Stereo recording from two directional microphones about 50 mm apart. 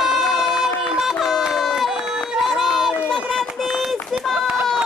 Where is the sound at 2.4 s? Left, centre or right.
Centre.